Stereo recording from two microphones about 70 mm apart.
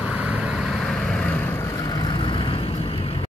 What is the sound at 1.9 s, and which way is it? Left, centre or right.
Vehicle, left.